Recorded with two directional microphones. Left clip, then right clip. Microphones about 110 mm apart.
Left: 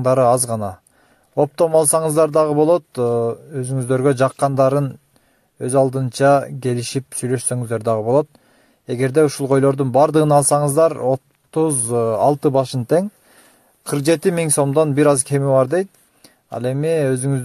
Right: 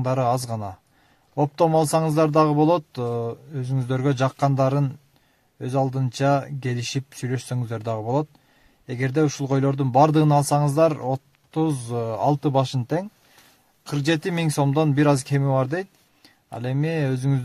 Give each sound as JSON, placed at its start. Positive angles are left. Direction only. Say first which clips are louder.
{"t": 0.0, "sound": "speech", "louder": "left 9 dB", "side_deg": 45}